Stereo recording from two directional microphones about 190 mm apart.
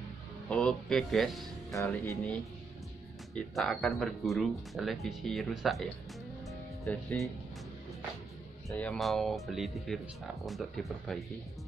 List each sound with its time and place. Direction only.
0.5 s speech: 5° left (ahead or behind)
1.7 s speech: 15° left (ahead or behind)
3.3 s speech: centre (ahead or behind)
8.6 s speech: 5° left (ahead or behind)